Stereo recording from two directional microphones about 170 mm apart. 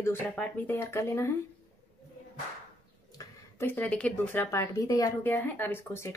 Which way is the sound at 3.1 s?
15° left (ahead or behind).